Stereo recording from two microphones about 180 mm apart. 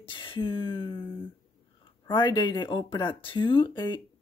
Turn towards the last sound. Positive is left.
turn(degrees=25)  # may be behind; listen again after turning